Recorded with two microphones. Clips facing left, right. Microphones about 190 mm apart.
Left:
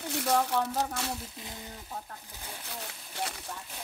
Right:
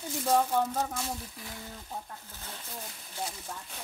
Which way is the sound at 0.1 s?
75° left (ahead or behind).